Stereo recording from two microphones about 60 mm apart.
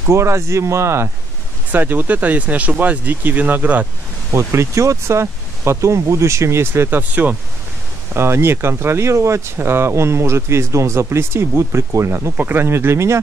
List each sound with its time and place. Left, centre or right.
0.1 s speech: right
1.7 s speech: right
4.3 s speech: right
7.0 s speech: right
8.1 s speech: right
12.4 s speech: right